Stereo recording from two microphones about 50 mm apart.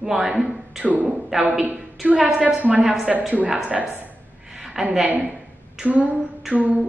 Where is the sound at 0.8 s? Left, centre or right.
Right.